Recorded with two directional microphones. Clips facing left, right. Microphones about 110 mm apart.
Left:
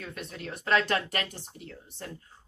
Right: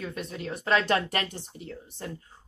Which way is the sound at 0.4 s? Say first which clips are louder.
Right 1 dB; 20° right (ahead or behind).